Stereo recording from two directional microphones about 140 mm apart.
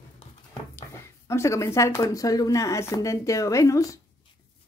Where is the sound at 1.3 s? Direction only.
20° left (ahead or behind).